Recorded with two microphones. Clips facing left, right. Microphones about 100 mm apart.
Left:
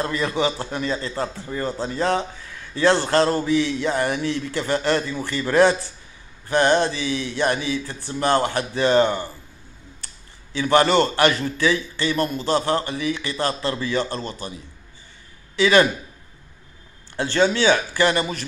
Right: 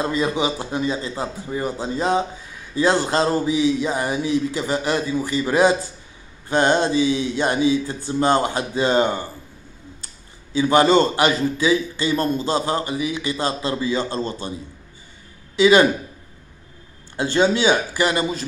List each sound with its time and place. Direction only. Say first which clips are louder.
0.0 s a man's voice: right 1 dB; 15° right (ahead or behind)
10.5 s a man's voice: right 2 dB; 20° right (ahead or behind)
15.5 s a man's voice: right 3 dB; 15° right (ahead or behind)
17.2 s a man's voice: right 1 dB; 15° right (ahead or behind)